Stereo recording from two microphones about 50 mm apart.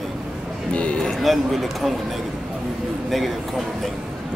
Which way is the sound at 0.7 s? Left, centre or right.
Left.